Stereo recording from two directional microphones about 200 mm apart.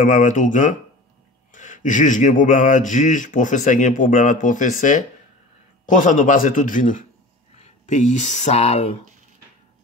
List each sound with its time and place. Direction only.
0.0 s speech: 40° left (ahead or behind)